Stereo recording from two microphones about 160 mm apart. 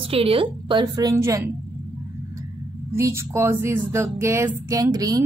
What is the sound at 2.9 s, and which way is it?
A woman's voice, 15° right (ahead or behind).